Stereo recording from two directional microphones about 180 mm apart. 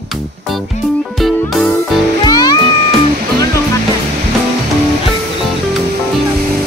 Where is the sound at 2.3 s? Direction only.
20° left (ahead or behind).